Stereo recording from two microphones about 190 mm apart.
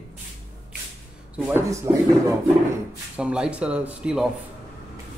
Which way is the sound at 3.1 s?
5° right (ahead or behind).